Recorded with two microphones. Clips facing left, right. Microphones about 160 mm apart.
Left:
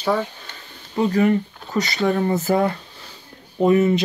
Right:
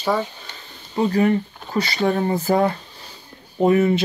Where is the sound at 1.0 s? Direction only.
35° right (ahead or behind).